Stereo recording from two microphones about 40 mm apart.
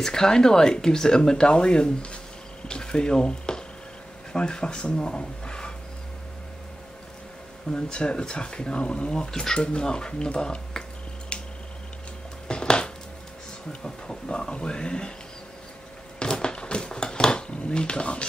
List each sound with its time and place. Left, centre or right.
0.0 s speech: centre
2.7 s a sound: left
4.3 s speech: left
7.7 s speech: left
11.3 s tick: left
12.4 s music: left
13.7 s speech: left
16.2 s a sound: centre